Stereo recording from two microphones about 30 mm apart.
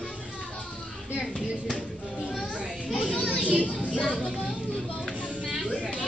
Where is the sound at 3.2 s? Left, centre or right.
Right.